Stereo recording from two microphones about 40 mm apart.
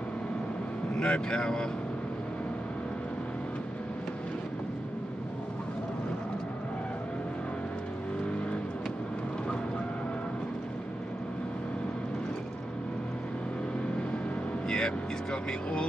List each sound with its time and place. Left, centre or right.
0.9 s speech: left
14.7 s vehicle: left